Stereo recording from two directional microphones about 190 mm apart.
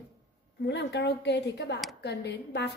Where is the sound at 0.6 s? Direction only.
65° left (ahead or behind).